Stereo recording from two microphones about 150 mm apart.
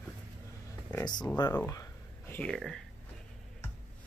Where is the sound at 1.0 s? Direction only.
30° left (ahead or behind).